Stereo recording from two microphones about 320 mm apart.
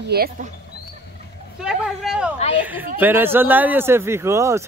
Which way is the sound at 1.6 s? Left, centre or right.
Centre.